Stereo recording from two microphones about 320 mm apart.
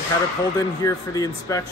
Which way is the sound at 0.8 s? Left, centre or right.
Centre.